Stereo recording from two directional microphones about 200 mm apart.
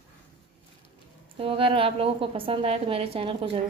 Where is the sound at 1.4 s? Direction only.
25° right (ahead or behind).